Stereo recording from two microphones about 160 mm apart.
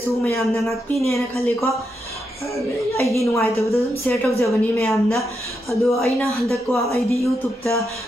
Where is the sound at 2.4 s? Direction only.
20° left (ahead or behind).